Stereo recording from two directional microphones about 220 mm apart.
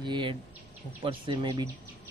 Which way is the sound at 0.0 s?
20° right (ahead or behind).